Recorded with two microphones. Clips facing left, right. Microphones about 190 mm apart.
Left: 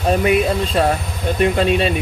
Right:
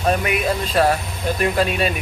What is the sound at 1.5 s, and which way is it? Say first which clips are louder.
Speech: left 3 dB; 25° left (ahead or behind).